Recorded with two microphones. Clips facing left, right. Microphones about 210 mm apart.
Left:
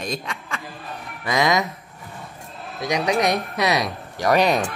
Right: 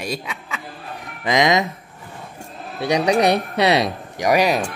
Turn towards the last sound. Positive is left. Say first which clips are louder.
# right 1 dB
turn(degrees=-10)  # may be behind; listen again after turning